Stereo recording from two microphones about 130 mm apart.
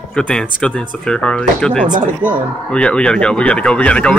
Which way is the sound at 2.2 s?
10° right (ahead or behind).